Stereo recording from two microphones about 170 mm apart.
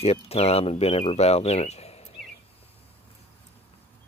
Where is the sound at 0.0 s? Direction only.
35° left (ahead or behind).